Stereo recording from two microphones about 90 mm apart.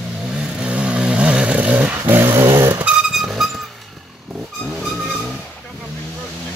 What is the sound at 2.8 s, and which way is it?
Vehicle, 5° right (ahead or behind).